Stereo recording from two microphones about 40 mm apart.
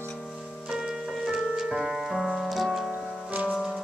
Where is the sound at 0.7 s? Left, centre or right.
Centre.